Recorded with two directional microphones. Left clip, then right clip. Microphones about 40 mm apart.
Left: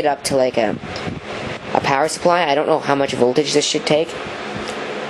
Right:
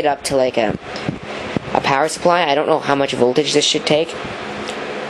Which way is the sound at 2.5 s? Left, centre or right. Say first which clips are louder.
Right 1 dB; right.